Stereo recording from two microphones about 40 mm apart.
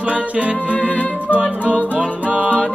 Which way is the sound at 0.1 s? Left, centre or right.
Right.